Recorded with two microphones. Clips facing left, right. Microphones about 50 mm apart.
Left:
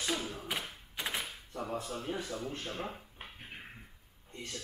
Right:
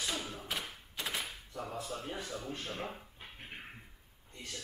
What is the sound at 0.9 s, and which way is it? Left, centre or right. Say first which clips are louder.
Thunk: left 2 dB; centre.